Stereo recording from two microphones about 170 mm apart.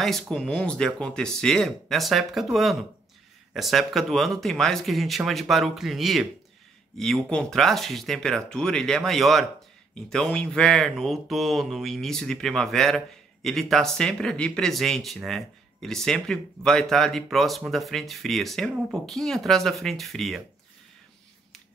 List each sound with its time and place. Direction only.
0.0 s speech: centre (ahead or behind)